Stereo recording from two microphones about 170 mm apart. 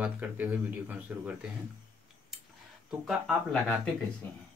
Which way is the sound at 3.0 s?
Centre (ahead or behind).